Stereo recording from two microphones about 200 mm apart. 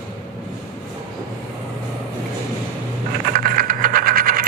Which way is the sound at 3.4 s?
45° right (ahead or behind).